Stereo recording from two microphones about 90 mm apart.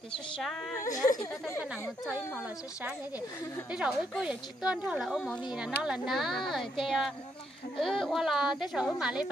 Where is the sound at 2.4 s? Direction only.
15° right (ahead or behind).